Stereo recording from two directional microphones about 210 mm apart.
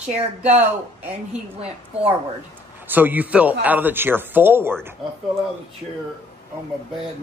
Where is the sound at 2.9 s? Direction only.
10° right (ahead or behind).